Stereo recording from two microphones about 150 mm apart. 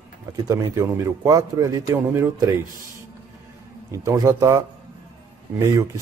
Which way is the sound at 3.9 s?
25° right (ahead or behind).